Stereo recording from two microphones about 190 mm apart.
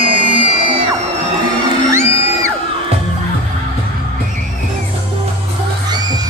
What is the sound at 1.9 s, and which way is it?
Music, 15° right (ahead or behind).